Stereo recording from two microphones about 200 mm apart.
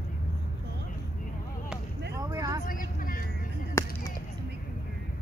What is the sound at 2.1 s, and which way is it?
Vehicle, 15° right (ahead or behind).